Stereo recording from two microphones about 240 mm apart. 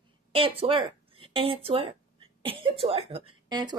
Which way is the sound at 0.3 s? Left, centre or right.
Right.